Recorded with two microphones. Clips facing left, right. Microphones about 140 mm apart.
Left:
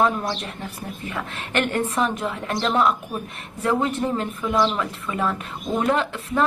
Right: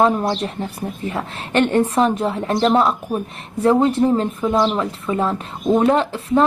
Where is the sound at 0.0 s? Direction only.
30° right (ahead or behind).